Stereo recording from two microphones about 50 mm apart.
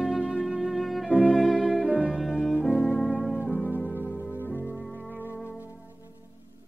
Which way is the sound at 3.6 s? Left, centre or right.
Right.